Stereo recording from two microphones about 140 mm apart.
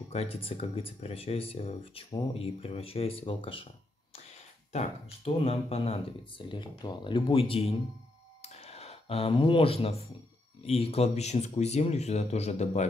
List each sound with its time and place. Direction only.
0.1 s speech: 45° left (ahead or behind)
8.4 s a sound: 50° left (ahead or behind)
10.6 s speech: 45° left (ahead or behind)